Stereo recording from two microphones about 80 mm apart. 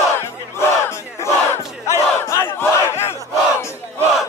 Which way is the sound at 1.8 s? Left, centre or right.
Left.